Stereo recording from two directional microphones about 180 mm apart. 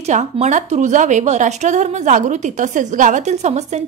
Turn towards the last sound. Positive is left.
turn(degrees=-40)  # may be behind; listen again after turning